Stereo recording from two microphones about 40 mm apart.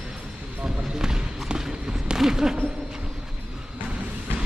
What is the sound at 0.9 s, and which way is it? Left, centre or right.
Run, centre.